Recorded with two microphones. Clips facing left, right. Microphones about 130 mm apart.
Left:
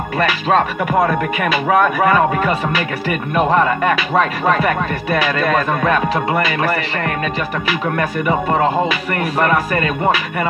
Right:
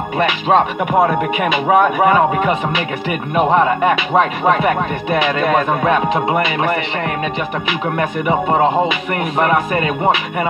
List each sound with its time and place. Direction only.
0.2 s music: 20° right (ahead or behind)
8.0 s music: 20° right (ahead or behind)
9.4 s speech: 15° right (ahead or behind)